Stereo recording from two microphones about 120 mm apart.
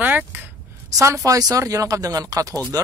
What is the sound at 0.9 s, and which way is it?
Speech, 25° right (ahead or behind).